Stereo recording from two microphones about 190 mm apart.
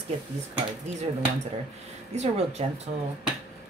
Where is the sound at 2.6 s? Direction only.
30° right (ahead or behind).